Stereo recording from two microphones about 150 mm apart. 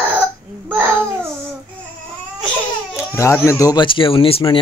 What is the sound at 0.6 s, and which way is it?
Babbling, 10° right (ahead or behind).